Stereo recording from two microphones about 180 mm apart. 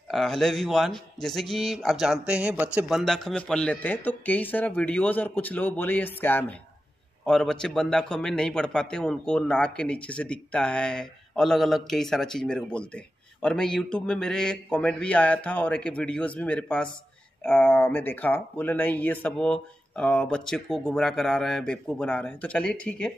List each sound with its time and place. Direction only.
0.1 s a man's voice: centre (ahead or behind)